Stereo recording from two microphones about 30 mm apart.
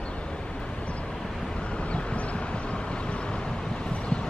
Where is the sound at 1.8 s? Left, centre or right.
Left.